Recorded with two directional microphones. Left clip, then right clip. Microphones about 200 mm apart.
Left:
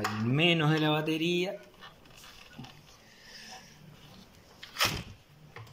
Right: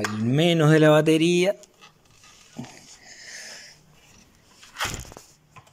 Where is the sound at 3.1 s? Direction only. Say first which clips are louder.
Right 8 dB; 45° right (ahead or behind).